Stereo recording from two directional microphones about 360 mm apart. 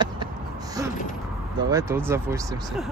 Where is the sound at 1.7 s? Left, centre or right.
Centre.